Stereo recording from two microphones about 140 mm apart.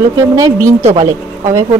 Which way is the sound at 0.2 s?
20° right (ahead or behind).